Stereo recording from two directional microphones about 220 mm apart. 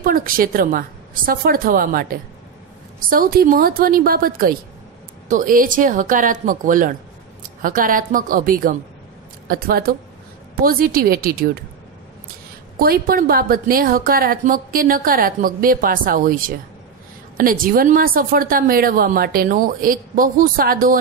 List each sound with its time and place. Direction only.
0.0 s a woman's voice: 40° right (ahead or behind)
12.7 s a woman's voice: 45° right (ahead or behind)